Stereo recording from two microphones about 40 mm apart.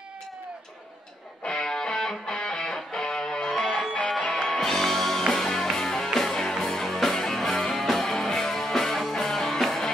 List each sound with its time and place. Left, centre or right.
1.4 s music: centre
3.4 s music: centre